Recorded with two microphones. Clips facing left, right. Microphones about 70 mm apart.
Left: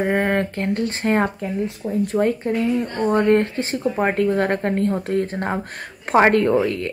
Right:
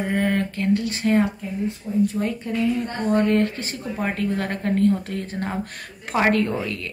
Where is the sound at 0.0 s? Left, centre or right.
Left.